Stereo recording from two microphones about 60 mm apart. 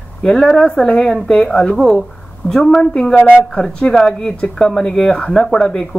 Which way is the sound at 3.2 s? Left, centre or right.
Left.